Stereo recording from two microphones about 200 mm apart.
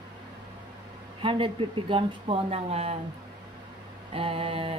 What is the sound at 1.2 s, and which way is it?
Speech, 25° right (ahead or behind).